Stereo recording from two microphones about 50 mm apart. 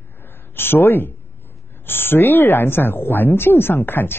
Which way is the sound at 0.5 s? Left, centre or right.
Left.